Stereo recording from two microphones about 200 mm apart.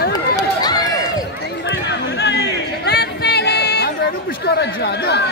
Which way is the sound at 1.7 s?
60° left (ahead or behind).